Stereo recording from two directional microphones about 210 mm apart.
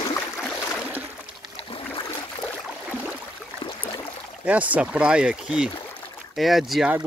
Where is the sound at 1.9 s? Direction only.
10° left (ahead or behind).